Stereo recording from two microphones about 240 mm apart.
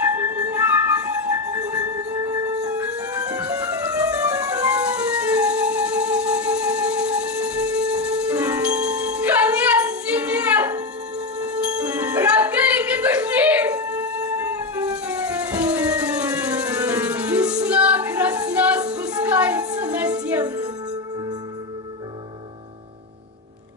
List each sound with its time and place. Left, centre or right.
0.1 s music: centre